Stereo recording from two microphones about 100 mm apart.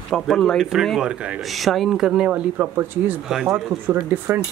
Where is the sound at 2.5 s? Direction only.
25° right (ahead or behind).